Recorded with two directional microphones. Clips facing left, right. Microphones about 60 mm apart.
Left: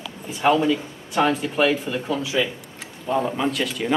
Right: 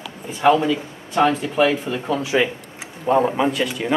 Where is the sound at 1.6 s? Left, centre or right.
Right.